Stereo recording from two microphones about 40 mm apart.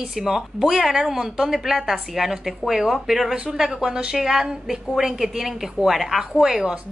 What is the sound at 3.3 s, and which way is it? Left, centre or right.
A woman's voice, centre.